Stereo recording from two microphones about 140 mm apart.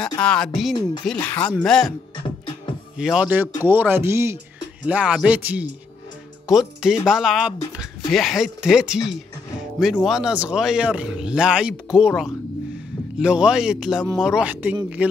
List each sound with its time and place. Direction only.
0.2 s speech: 5° left (ahead or behind)
3.0 s speech: 5° right (ahead or behind)
4.8 s speech: 10° right (ahead or behind)
13.2 s a man's voice: 5° right (ahead or behind)